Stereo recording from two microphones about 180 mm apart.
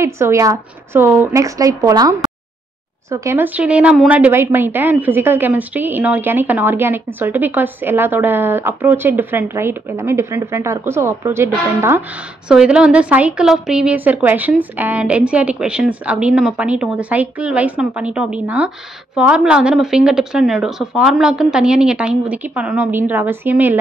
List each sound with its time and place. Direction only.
0.0 s speech: 15° right (ahead or behind)